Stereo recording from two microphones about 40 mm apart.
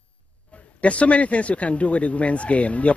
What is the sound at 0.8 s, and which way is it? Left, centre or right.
Speech, left.